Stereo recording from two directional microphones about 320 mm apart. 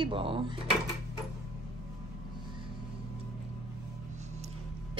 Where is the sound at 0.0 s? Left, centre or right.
Centre.